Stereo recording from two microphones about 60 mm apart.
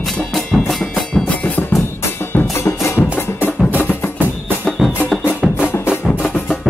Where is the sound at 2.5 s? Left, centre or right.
Left.